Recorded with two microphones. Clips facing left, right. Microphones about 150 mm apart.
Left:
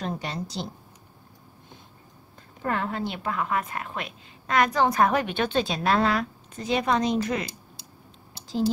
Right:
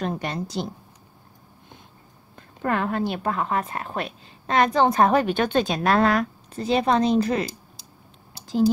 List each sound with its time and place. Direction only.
0.0 s a woman's voice: 55° right (ahead or behind)
2.6 s speech: 65° right (ahead or behind)
3.0 s a woman's voice: 40° right (ahead or behind)
6.5 s a woman's voice: 30° right (ahead or behind)